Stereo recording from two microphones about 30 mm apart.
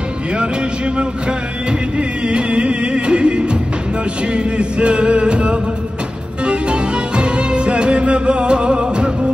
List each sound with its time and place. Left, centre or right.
0.3 s music: right